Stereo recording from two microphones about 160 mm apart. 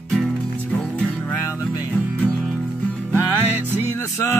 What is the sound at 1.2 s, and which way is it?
Music, 20° left (ahead or behind).